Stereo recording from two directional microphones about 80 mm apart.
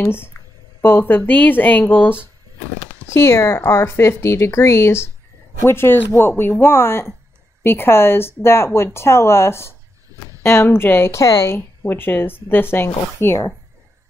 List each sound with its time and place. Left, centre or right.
0.0 s speech: left